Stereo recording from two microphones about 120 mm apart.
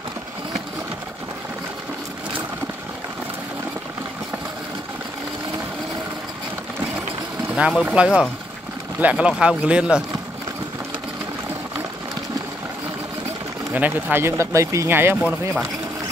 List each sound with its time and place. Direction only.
7.5 s speech: 10° right (ahead or behind)
13.7 s speech: 15° right (ahead or behind)